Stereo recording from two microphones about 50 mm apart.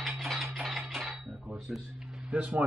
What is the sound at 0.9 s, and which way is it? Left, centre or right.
Cutlery, centre.